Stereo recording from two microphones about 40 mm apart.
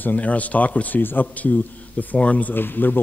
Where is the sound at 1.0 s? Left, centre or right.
Left.